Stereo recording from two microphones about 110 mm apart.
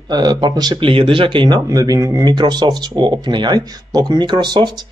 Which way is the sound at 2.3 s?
40° right (ahead or behind).